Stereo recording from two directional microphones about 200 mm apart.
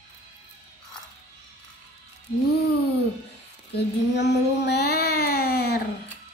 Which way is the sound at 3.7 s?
55° left (ahead or behind).